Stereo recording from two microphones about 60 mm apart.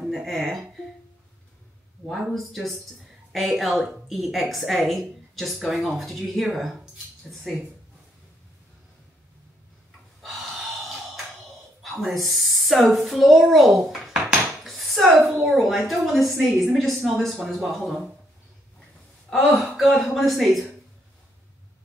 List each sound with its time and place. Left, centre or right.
0.0 s speech: centre
2.3 s a woman's voice: centre
10.2 s gasp: centre
12.0 s speech: centre
12.9 s dishes: centre
15.2 s a woman's voice: centre
19.3 s a woman's voice: centre